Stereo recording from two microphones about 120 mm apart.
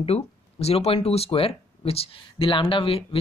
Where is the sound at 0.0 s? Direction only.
60° left (ahead or behind).